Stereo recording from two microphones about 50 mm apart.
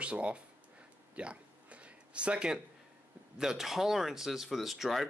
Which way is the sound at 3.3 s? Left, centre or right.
Centre.